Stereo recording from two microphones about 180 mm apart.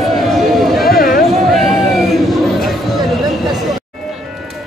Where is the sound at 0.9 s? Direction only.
55° left (ahead or behind).